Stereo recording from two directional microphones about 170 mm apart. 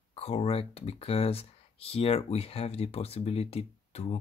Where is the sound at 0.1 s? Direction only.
35° left (ahead or behind).